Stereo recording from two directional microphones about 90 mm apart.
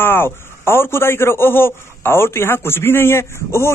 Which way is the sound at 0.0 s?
25° left (ahead or behind).